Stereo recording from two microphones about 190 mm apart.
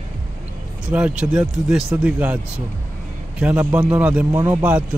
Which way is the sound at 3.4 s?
5° right (ahead or behind).